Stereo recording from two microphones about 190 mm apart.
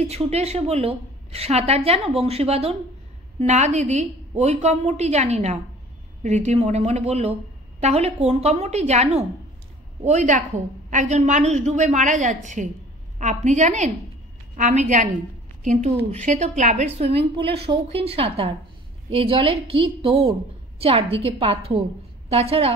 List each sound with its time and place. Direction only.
0.1 s a woman's voice: 35° right (ahead or behind)